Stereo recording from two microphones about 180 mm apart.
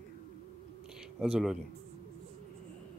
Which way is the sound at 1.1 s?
5° right (ahead or behind).